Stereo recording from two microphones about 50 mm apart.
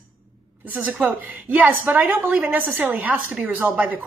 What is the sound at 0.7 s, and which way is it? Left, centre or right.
A woman's voice, right.